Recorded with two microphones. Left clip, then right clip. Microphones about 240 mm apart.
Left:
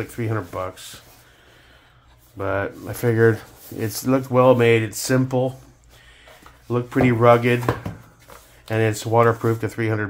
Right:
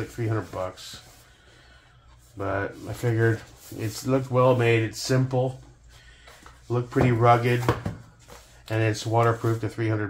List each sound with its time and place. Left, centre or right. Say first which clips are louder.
0.2 s speech: left 3 dB; left
2.3 s speech: left 4 dB; left
6.7 s speech: left 4 dB; left
8.6 s speech: left 5 dB; left